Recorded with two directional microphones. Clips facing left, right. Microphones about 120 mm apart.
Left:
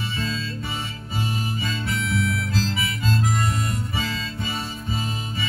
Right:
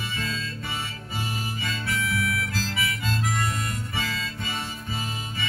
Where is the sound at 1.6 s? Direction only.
25° left (ahead or behind).